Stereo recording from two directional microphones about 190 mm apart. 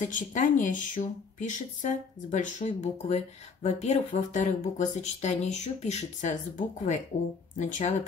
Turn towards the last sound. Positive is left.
turn(degrees=40)  # may be behind; listen again after turning